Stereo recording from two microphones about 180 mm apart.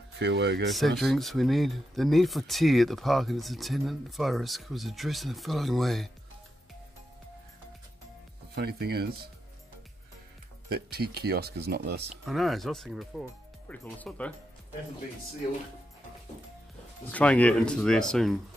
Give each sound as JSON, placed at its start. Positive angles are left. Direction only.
{"t": 0.2, "sound": "speech", "side_deg": -70}
{"t": 0.7, "sound": "speech", "side_deg": 0}
{"t": 8.5, "sound": "speech", "side_deg": -60}
{"t": 10.7, "sound": "speech", "side_deg": -60}
{"t": 12.3, "sound": "speech", "side_deg": 0}
{"t": 17.1, "sound": "speech", "side_deg": 10}